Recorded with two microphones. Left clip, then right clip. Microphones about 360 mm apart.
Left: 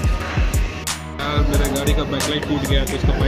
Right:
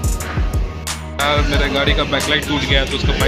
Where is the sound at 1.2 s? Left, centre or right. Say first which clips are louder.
Right 6 dB; centre.